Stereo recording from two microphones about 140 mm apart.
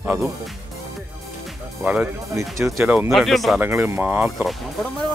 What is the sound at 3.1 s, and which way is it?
Speech, centre (ahead or behind).